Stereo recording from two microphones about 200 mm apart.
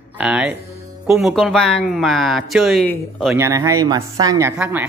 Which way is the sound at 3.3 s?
15° right (ahead or behind).